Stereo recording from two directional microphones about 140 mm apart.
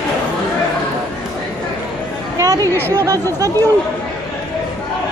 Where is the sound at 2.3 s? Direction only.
25° right (ahead or behind).